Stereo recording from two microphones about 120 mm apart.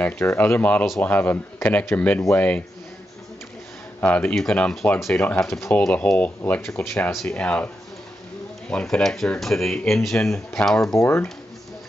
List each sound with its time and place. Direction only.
0.0 s speech: 15° left (ahead or behind)
4.0 s speech: 10° left (ahead or behind)
5.5 s speech: 20° left (ahead or behind)
5.8 s speech: 10° left (ahead or behind)
6.7 s speech: centre (ahead or behind)
10.8 s speech: 25° left (ahead or behind)